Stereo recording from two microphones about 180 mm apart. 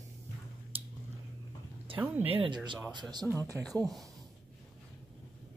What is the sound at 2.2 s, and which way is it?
Speech, 30° right (ahead or behind).